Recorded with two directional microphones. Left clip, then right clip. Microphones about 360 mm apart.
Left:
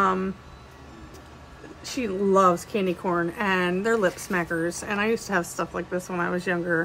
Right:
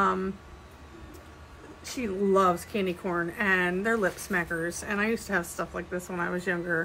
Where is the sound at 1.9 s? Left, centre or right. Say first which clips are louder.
Left 3 dB; centre.